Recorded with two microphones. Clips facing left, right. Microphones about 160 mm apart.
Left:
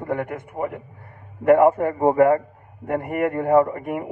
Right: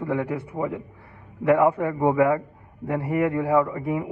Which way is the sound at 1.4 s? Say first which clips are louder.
Left 4 dB; 50° left (ahead or behind).